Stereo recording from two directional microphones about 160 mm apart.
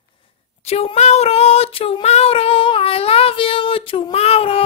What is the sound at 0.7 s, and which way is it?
Female singing, 40° left (ahead or behind).